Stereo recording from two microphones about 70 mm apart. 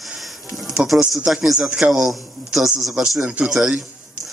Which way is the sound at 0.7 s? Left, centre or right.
Centre.